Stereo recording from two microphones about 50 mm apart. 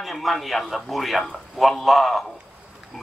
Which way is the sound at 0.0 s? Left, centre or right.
Centre.